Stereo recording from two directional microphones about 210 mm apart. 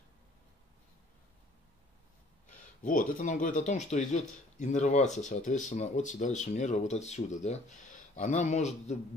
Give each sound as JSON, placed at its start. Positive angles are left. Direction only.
{"t": 2.8, "sound": "speech", "side_deg": 40}